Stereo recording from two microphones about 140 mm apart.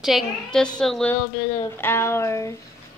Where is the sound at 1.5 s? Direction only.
15° left (ahead or behind).